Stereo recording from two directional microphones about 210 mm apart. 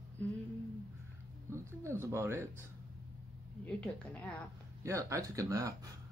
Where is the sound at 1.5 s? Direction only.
15° right (ahead or behind).